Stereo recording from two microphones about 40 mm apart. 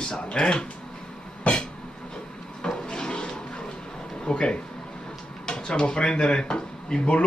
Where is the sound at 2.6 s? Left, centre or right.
Centre.